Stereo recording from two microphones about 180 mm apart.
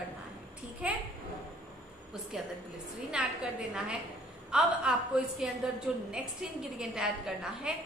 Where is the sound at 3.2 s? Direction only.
5° right (ahead or behind).